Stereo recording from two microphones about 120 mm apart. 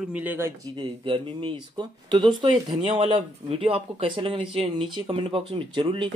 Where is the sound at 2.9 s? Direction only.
55° right (ahead or behind).